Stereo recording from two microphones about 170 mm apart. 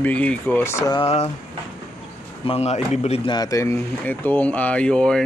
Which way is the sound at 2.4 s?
40° left (ahead or behind).